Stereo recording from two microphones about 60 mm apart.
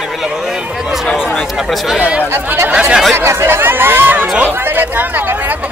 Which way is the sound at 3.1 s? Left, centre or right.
Right.